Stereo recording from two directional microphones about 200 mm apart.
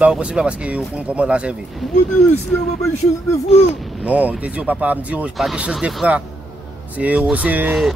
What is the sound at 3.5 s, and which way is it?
Speech, 5° right (ahead or behind).